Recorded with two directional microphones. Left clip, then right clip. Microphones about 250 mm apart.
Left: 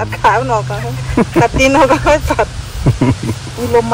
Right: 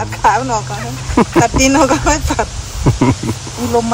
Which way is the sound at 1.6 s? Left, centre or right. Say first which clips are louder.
Left 2 dB; centre.